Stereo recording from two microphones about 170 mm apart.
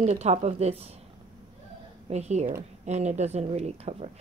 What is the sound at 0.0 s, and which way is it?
Speech, 40° right (ahead or behind).